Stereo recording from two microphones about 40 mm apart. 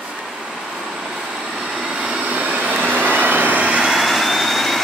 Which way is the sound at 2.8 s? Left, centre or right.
Right.